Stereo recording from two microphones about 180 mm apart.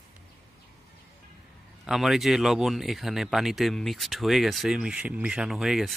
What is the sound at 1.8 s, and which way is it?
Speech, centre (ahead or behind).